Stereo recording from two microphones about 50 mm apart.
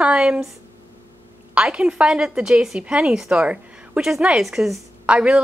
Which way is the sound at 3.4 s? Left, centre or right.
Right.